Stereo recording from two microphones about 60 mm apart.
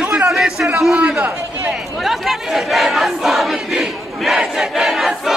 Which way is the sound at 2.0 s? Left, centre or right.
Centre.